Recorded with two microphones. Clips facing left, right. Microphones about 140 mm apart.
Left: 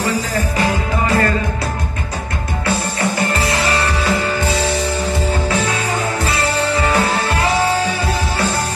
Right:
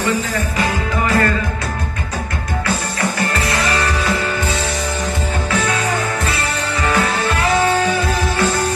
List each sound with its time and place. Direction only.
0.0 s music: 35° left (ahead or behind)
3.3 s music: 30° left (ahead or behind)